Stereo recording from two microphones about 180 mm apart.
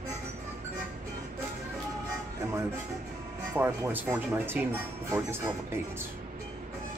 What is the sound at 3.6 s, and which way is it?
Speech, 10° right (ahead or behind).